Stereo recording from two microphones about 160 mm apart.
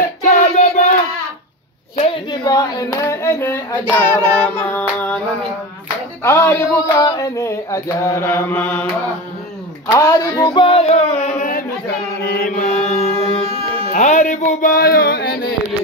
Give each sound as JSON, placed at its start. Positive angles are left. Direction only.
{"t": 0.3, "sound": "child singing", "side_deg": 50}
{"t": 2.0, "sound": "hands", "side_deg": 30}
{"t": 6.2, "sound": "speech", "side_deg": 15}
{"t": 7.0, "sound": "mantra", "side_deg": 25}
{"t": 9.8, "sound": "a sound", "side_deg": 20}
{"t": 12.3, "sound": "mantra", "side_deg": 65}
{"t": 13.9, "sound": "a sound", "side_deg": 50}